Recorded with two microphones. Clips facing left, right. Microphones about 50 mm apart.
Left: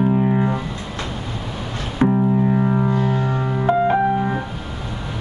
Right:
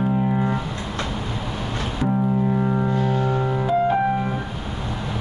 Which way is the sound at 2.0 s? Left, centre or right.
Left.